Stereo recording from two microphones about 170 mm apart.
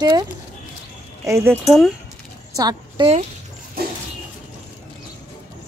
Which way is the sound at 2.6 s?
25° right (ahead or behind).